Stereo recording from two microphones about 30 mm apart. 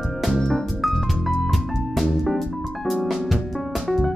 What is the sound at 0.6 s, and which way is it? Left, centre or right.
Music, centre.